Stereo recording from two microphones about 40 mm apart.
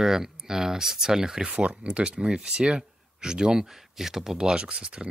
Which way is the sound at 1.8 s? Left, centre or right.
Right.